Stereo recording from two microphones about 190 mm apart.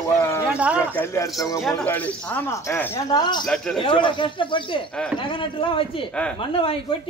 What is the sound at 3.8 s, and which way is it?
Speech, 25° left (ahead or behind).